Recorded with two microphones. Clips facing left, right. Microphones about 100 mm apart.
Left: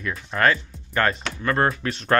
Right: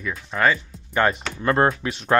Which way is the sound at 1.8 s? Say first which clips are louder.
Right 1 dB; 5° right (ahead or behind).